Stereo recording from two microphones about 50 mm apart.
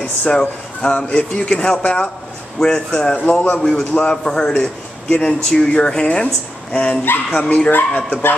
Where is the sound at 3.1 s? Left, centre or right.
Left.